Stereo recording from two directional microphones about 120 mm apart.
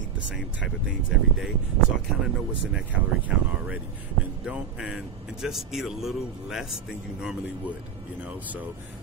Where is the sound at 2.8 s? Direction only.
10° right (ahead or behind).